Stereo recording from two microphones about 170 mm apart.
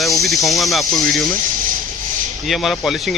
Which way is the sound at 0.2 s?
Centre (ahead or behind).